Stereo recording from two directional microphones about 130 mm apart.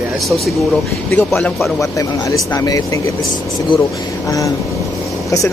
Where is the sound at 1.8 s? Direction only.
25° left (ahead or behind).